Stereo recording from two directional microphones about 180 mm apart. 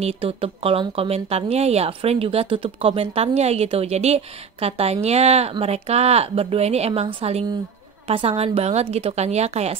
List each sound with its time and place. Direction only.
0.0 s speech: 30° right (ahead or behind)